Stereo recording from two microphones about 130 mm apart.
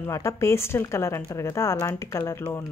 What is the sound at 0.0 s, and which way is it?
A woman's voice, 20° left (ahead or behind).